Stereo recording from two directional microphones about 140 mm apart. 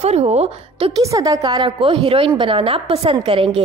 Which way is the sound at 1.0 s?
25° right (ahead or behind).